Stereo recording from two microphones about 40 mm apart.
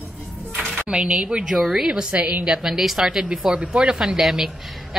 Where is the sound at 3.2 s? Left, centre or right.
Right.